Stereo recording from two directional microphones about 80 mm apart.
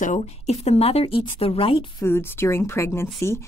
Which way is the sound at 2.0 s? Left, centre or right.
Left.